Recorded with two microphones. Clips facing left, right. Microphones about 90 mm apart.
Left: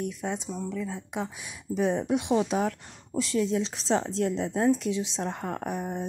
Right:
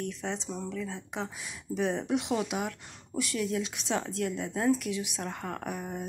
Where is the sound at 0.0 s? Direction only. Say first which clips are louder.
Left 3 dB; 15° left (ahead or behind).